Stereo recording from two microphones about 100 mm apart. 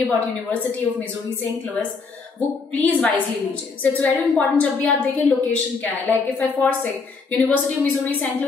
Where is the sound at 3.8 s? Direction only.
15° left (ahead or behind).